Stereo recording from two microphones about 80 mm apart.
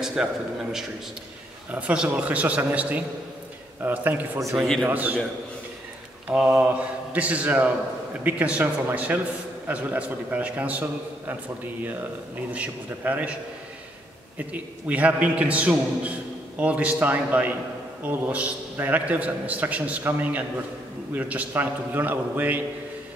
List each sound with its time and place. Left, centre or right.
0.0 s a man's voice: centre
6.6 s a man's voice: centre
14.5 s a man's voice: centre